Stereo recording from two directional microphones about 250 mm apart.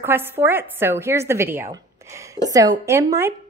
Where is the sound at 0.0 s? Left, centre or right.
Centre.